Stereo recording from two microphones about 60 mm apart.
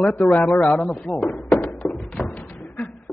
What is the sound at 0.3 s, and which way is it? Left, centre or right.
Speech, left.